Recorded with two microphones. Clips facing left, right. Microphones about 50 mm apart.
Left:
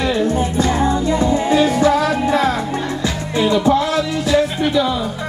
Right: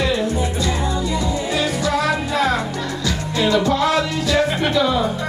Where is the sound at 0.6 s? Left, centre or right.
Left.